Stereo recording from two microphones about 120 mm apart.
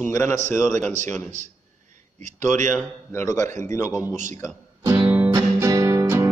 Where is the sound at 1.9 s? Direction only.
90° right.